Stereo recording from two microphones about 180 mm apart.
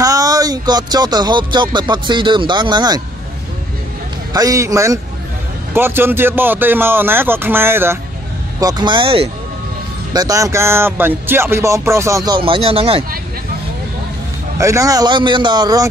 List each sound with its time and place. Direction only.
0.0 s music: 20° right (ahead or behind)
4.3 s a man's voice: 20° right (ahead or behind)
10.1 s speech: 20° right (ahead or behind)
14.6 s a man's voice: 15° right (ahead or behind)